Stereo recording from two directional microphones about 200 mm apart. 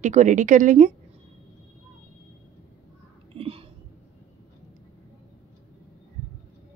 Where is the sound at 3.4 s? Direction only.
30° right (ahead or behind).